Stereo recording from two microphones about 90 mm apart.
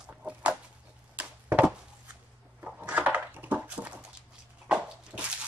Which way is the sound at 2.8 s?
15° right (ahead or behind).